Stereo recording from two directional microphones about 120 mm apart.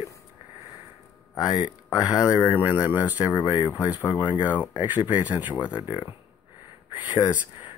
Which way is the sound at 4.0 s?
30° left (ahead or behind).